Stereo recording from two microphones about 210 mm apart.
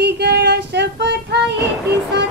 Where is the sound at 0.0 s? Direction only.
50° right (ahead or behind).